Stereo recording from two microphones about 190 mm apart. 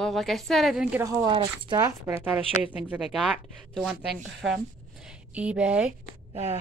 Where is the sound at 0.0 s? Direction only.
Centre (ahead or behind).